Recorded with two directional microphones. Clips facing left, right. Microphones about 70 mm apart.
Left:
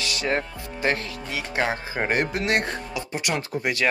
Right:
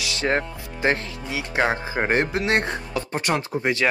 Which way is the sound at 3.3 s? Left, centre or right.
Right.